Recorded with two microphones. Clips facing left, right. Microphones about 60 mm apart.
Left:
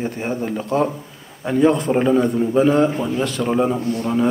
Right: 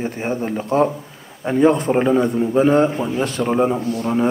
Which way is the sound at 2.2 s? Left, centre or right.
Centre.